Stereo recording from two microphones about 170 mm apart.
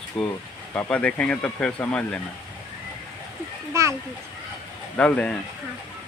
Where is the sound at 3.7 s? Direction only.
15° right (ahead or behind).